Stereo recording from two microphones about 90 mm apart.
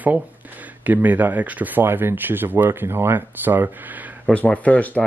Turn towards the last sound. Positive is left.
turn(degrees=15)  # may be behind; listen again after turning